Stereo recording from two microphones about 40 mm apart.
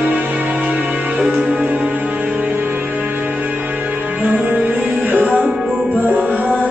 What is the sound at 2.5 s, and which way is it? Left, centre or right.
Music, right.